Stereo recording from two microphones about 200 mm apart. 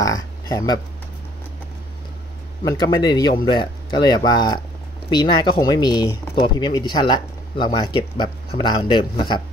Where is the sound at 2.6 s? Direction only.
20° left (ahead or behind).